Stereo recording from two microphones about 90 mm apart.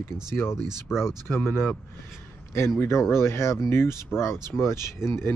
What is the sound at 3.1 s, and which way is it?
Speech, 30° left (ahead or behind).